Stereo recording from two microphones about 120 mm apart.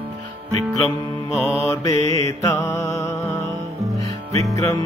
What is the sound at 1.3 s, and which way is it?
Mantra, 5° right (ahead or behind).